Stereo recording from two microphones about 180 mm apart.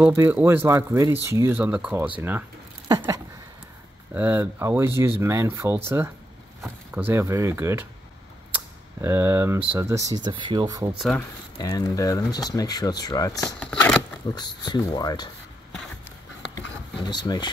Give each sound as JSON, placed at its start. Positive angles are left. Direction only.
{"t": 0.0, "sound": "speech", "side_deg": -10}
{"t": 4.1, "sound": "speech", "side_deg": -10}
{"t": 8.5, "sound": "a sound", "side_deg": -15}
{"t": 9.7, "sound": "speech", "side_deg": -15}
{"t": 10.9, "sound": "speech", "side_deg": 0}
{"t": 11.5, "sound": "speech", "side_deg": 20}
{"t": 13.7, "sound": "a sound", "side_deg": 5}
{"t": 14.3, "sound": "speech", "side_deg": 25}
{"t": 17.0, "sound": "speech", "side_deg": 25}